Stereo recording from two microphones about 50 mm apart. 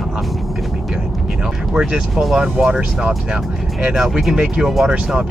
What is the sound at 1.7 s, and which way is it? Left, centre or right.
Speech, centre.